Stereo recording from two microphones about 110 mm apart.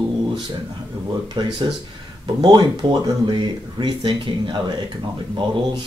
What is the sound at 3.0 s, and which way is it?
Speech, 45° right (ahead or behind).